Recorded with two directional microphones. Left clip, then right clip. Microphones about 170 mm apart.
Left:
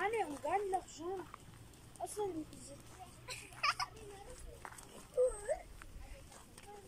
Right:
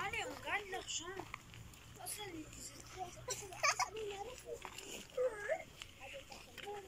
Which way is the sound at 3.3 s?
40° right (ahead or behind).